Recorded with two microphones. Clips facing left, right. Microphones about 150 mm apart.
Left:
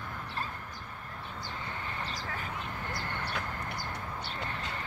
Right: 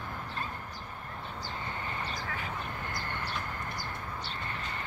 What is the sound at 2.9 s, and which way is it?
Vehicle, 65° left (ahead or behind).